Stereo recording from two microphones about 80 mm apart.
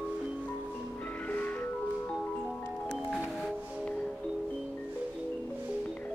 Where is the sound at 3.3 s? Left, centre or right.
Centre.